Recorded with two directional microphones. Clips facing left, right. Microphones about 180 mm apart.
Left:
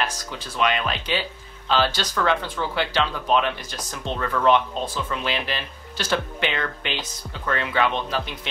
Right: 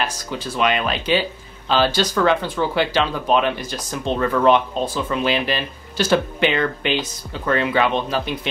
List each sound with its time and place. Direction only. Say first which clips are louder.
0.0 s speech: right 3 dB; 10° right (ahead or behind)